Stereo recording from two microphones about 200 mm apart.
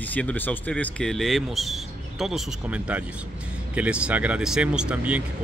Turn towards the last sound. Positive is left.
turn(degrees=-5)  # may be behind; listen again after turning